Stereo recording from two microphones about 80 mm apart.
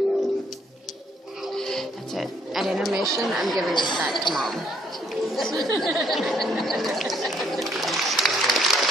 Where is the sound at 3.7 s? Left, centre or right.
Left.